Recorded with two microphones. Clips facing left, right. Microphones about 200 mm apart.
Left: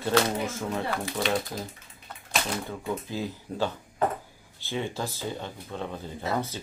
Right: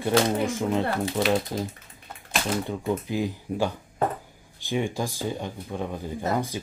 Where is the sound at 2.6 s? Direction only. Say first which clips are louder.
Right 5 dB; 15° right (ahead or behind).